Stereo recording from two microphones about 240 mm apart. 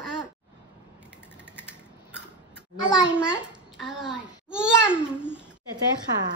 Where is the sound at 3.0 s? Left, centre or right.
Centre.